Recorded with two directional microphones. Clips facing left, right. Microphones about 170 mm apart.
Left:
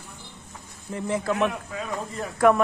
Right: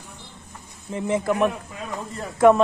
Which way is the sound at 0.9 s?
20° right (ahead or behind).